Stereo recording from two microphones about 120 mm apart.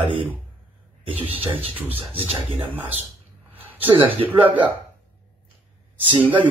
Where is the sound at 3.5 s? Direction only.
15° right (ahead or behind).